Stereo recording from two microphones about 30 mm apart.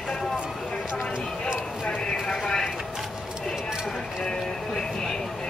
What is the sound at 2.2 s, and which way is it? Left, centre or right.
Vehicle, left.